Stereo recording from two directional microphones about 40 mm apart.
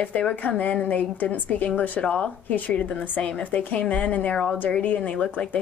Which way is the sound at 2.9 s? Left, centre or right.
Left.